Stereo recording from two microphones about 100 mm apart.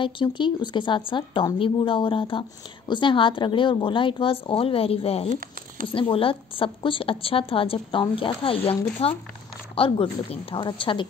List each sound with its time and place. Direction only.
0.0 s a woman's voice: 55° left (ahead or behind); by 5.3 s 75° left (ahead or behind)
5.9 s a woman's voice: 65° left (ahead or behind); by 9.2 s 80° left
9.8 s a woman's voice: 65° left (ahead or behind)